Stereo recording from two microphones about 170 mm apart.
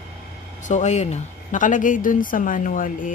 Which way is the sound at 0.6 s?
45° left (ahead or behind).